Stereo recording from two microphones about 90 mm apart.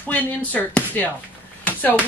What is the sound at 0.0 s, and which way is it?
Speech, 20° left (ahead or behind).